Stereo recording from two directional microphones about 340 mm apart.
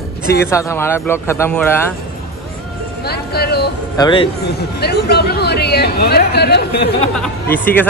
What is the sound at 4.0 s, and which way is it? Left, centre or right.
Speech, centre.